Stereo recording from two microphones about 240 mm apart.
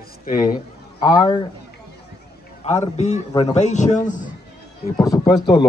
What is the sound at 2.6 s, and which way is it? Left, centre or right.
A man's voice, left.